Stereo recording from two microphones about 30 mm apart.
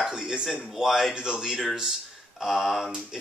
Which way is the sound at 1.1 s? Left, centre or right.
Right.